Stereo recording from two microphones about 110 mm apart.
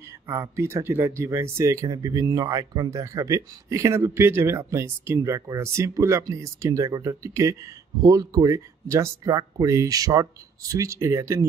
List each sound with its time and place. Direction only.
0.3 s speech: 25° right (ahead or behind)